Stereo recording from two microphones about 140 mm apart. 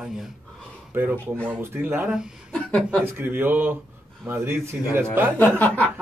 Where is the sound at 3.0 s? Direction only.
15° right (ahead or behind).